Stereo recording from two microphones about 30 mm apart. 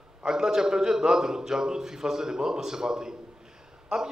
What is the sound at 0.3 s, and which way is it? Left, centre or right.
A man's voice, centre.